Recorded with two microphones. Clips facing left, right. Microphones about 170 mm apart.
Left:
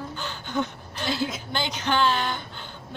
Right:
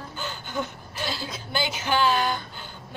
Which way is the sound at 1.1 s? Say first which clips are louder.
Left 7 dB; 20° left (ahead or behind).